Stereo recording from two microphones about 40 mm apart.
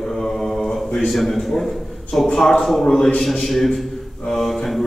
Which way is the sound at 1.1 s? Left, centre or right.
Centre.